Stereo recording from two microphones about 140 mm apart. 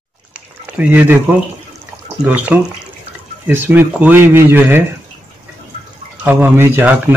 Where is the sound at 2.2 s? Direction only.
10° right (ahead or behind).